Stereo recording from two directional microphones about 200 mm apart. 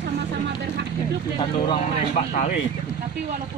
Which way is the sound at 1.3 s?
25° left (ahead or behind).